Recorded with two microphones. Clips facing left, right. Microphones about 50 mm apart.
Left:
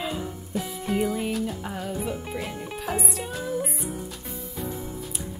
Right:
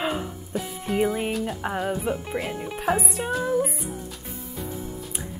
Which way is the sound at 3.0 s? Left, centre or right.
Right.